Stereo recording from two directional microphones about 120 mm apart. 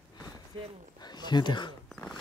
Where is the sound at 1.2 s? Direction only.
40° left (ahead or behind).